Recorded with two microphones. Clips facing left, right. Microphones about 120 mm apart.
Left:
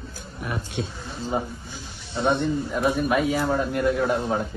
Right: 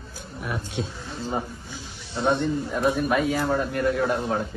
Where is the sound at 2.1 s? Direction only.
Centre (ahead or behind).